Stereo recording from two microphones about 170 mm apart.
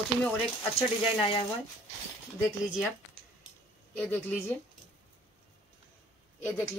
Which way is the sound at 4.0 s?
10° left (ahead or behind).